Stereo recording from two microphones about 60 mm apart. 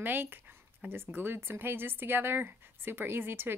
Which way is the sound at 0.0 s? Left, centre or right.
Right.